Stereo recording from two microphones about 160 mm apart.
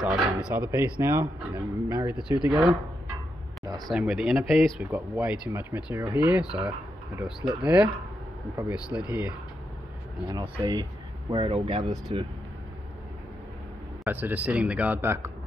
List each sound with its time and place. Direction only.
0.0 s speech: 5° right (ahead or behind)
0.7 s speech: 15° right (ahead or behind)
3.6 s a sound: 25° right (ahead or behind)
3.9 s speech: 5° right (ahead or behind)
10.2 s speech: 25° right (ahead or behind)
14.0 s speech: 10° right (ahead or behind)